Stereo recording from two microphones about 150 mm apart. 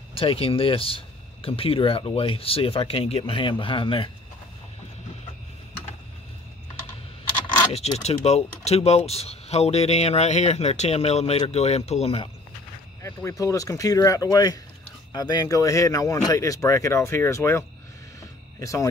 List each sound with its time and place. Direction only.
0.1 s speech: 35° left (ahead or behind)
7.7 s speech: 45° left (ahead or behind)
13.0 s speech: 20° left (ahead or behind)